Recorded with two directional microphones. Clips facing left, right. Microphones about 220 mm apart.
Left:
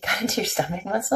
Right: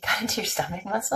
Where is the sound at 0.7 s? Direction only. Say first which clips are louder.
Left 5 dB; 30° left (ahead or behind).